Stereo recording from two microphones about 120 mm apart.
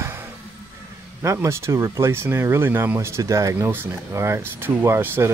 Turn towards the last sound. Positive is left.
turn(degrees=-20)  # may be behind; listen again after turning